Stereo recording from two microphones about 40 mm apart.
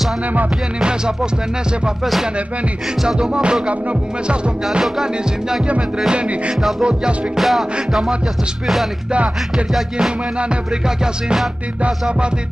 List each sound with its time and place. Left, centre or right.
3.2 s music: centre
6.1 s music: right
7.3 s music: centre